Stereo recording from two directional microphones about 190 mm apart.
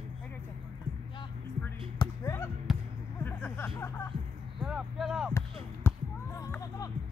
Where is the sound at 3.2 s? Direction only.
10° left (ahead or behind).